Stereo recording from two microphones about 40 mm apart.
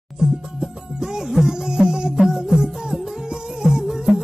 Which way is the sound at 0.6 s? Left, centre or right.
Centre.